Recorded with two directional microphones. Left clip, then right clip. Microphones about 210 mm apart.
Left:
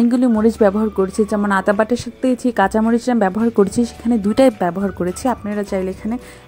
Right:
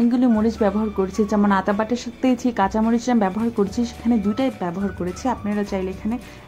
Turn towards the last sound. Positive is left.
turn(degrees=30)  # may be behind; listen again after turning